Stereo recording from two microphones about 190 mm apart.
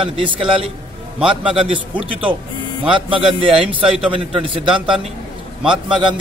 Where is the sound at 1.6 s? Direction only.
30° right (ahead or behind).